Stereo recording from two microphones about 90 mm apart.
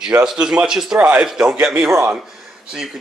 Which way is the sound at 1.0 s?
20° right (ahead or behind).